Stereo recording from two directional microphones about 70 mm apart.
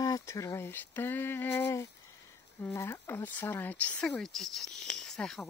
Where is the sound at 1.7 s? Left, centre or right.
Left.